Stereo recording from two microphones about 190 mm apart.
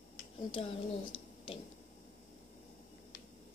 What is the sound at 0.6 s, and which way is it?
Speech, 30° left (ahead or behind).